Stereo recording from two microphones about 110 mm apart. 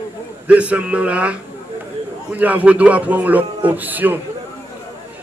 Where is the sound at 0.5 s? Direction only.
10° right (ahead or behind).